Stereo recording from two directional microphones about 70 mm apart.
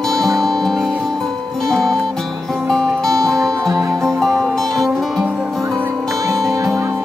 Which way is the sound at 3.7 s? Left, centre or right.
Right.